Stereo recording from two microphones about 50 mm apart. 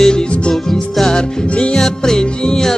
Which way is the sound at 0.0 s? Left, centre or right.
Centre.